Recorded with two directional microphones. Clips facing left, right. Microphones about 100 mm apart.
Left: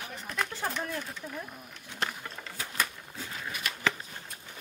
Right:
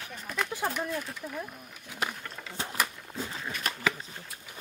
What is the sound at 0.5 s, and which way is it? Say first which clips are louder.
Speech: right 2 dB; 10° right (ahead or behind).